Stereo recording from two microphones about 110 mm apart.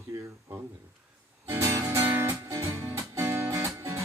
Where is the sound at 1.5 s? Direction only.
30° right (ahead or behind).